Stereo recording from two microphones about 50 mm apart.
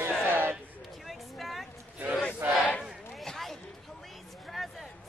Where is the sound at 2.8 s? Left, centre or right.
Centre.